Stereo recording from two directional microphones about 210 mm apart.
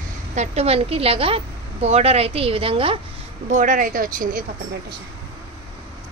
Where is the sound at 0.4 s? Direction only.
30° right (ahead or behind).